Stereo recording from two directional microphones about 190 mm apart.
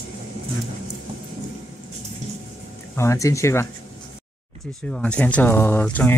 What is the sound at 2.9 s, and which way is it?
Speech, 15° left (ahead or behind).